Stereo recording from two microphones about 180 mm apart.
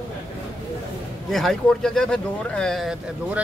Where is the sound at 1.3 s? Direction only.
Centre (ahead or behind).